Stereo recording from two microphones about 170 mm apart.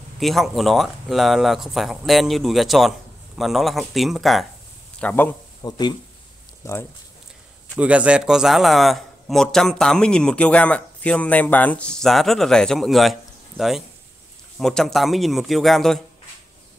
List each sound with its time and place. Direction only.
0.2 s a man's voice: centre (ahead or behind)
5.6 s speech: 25° left (ahead or behind)
7.8 s a man's voice: 5° right (ahead or behind)